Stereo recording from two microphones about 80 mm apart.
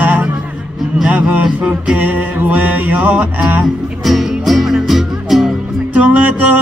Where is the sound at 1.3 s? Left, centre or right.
Centre.